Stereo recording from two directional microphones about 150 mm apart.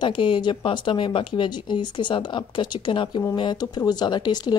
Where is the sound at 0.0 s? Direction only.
30° left (ahead or behind).